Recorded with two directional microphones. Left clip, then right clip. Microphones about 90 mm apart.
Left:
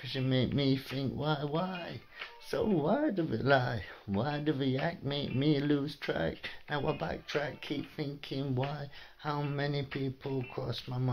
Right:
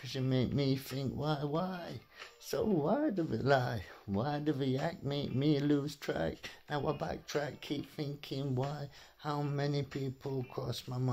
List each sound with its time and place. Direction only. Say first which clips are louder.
0.1 s speech: left 3 dB; 40° right (ahead or behind)